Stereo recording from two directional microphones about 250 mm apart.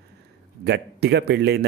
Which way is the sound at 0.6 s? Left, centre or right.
Right.